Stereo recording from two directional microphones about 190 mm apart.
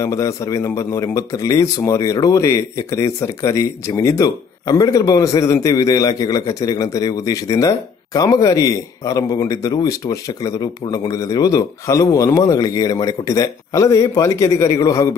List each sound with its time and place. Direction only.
0.0 s speech: 15° left (ahead or behind)